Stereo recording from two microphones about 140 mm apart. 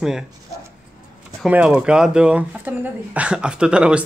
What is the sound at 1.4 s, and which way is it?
Speech, 5° right (ahead or behind).